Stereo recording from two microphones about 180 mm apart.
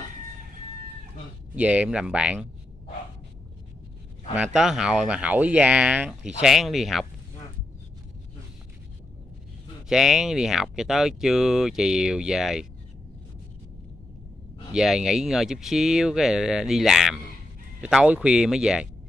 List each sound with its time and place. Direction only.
1.5 s speech: 5° right (ahead or behind)
4.6 s speech: 5° right (ahead or behind)
9.8 s speech: centre (ahead or behind)
14.7 s speech: 5° right (ahead or behind)